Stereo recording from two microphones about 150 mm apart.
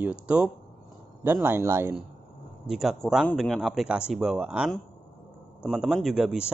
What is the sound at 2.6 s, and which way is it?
A man's voice, 5° right (ahead or behind).